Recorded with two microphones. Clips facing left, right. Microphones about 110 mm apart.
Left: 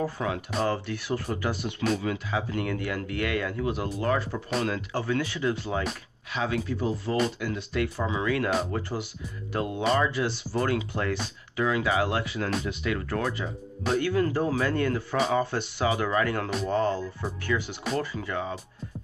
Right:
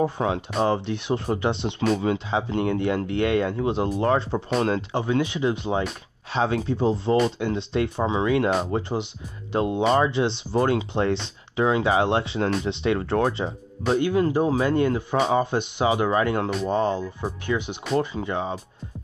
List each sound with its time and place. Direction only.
0.0 s speech: 25° right (ahead or behind)